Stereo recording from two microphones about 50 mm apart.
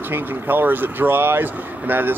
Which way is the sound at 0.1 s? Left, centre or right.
Right.